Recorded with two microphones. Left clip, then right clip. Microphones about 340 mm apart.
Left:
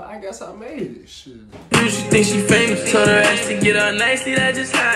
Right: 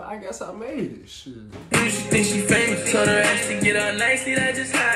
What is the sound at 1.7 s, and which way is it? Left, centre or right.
Music, left.